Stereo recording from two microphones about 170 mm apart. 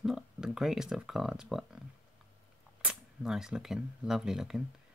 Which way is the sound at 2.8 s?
5° right (ahead or behind).